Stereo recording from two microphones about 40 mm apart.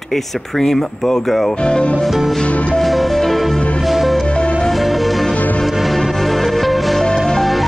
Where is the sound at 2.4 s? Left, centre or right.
Left.